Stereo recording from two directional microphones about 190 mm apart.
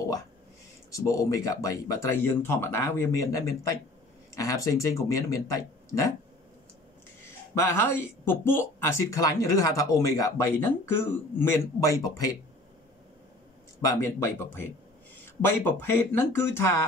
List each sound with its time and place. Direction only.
0.9 s speech: 15° left (ahead or behind)
7.5 s speech: 15° left (ahead or behind)
13.7 s speech: 15° left (ahead or behind)